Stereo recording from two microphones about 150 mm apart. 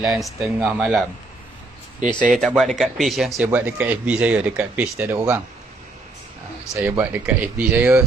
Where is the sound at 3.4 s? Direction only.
10° right (ahead or behind).